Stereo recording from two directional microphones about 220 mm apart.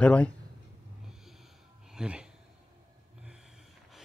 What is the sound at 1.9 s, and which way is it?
Speech, 5° right (ahead or behind).